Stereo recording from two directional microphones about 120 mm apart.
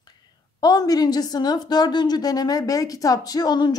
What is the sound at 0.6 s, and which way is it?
A woman's voice, 35° left (ahead or behind).